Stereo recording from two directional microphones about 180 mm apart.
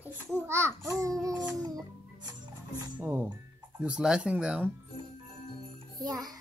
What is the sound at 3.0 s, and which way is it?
Speech, 10° right (ahead or behind).